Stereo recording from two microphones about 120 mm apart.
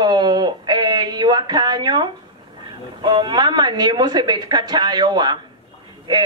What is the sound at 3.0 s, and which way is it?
A man's voice, 40° right (ahead or behind).